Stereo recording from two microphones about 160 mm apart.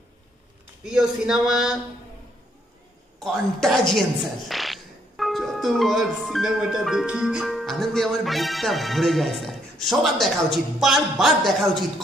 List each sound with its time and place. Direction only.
0.8 s a woman's voice: 5° right (ahead or behind)
3.3 s a woman's voice: centre (ahead or behind)